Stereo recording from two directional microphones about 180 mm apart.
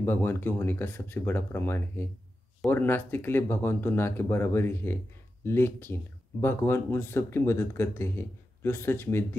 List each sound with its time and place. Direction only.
0.0 s speech: 10° left (ahead or behind)